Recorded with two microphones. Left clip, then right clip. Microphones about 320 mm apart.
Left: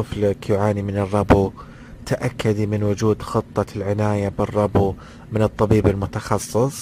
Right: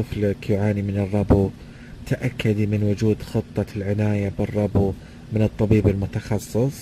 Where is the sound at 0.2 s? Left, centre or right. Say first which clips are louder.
Left 4 dB; left.